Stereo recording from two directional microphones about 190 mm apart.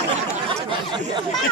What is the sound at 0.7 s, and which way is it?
Speech, 25° right (ahead or behind).